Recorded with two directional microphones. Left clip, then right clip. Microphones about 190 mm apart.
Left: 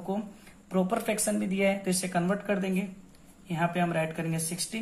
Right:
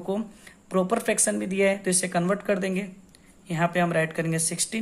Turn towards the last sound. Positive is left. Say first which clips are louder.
# right 6 dB
turn(degrees=-45)  # may be behind; listen again after turning